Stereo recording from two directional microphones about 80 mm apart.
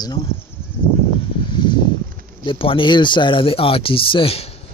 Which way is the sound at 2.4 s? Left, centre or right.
Left.